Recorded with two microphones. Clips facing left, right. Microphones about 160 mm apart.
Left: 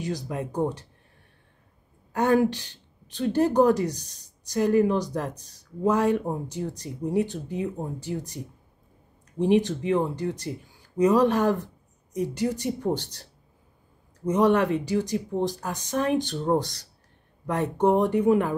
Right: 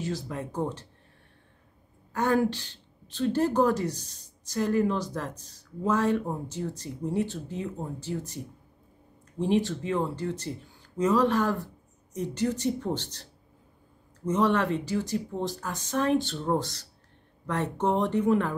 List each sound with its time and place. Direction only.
0.0 s speech: 15° left (ahead or behind)
2.1 s speech: 15° left (ahead or behind)
9.4 s speech: 15° left (ahead or behind)
14.2 s speech: 15° left (ahead or behind)